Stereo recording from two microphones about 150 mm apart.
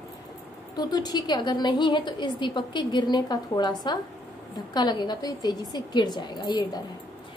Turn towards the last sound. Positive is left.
turn(degrees=30)  # may be behind; listen again after turning